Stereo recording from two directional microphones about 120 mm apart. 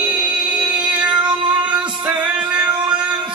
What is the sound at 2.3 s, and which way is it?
Music, 10° right (ahead or behind).